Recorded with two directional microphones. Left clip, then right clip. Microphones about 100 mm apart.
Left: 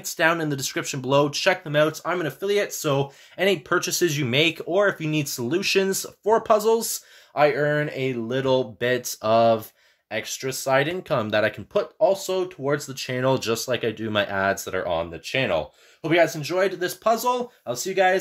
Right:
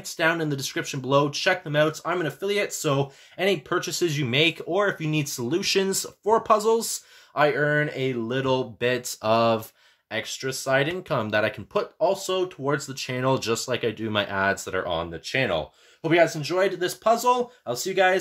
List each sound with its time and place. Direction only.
0.0 s speech: 60° left (ahead or behind); by 3.1 s 30° left (ahead or behind)
3.3 s speech: 60° left (ahead or behind); by 9.6 s 20° left (ahead or behind)
10.1 s speech: 35° left (ahead or behind)